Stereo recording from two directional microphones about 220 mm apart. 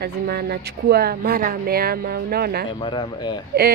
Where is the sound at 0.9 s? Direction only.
45° right (ahead or behind).